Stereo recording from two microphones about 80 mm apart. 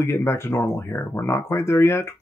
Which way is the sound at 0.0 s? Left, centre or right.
Left.